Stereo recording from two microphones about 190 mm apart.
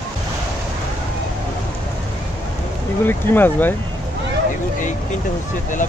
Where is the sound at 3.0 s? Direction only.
10° left (ahead or behind).